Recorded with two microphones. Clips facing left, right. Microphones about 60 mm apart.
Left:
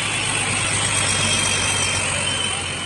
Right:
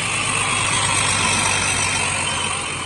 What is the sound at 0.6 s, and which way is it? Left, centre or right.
Vehicle, right.